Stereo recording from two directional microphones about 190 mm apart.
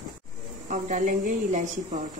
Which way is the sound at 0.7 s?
40° right (ahead or behind).